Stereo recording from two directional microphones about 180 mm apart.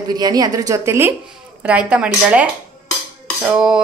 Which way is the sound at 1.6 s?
5° right (ahead or behind).